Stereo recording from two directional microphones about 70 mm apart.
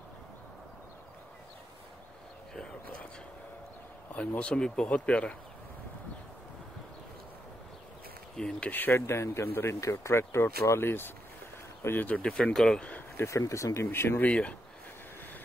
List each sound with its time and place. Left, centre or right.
4.1 s speech: left
8.4 s speech: centre
8.6 s speech: left
8.9 s speech: left
9.8 s speech: left
12.2 s speech: centre
13.2 s speech: left
13.8 s speech: left
14.2 s speech: centre